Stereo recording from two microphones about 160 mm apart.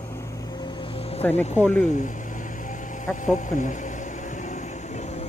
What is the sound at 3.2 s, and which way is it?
Speech, 50° left (ahead or behind).